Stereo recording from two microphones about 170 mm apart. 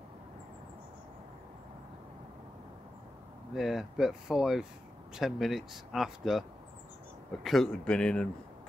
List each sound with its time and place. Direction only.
3.5 s speech: centre (ahead or behind)
7.4 s speech: centre (ahead or behind)